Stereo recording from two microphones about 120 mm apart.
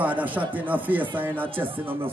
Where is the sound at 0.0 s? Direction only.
15° right (ahead or behind).